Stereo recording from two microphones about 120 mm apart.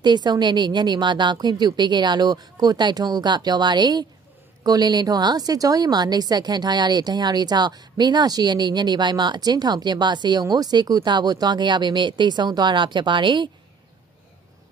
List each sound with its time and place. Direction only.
0.0 s a woman's voice: 35° right (ahead or behind)